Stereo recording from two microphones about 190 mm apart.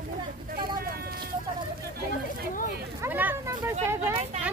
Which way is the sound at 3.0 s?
10° right (ahead or behind).